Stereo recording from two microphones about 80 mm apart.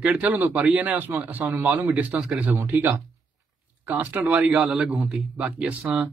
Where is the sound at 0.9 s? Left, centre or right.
Right.